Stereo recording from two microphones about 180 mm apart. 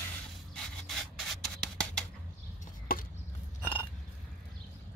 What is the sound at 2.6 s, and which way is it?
Chop, 50° left (ahead or behind).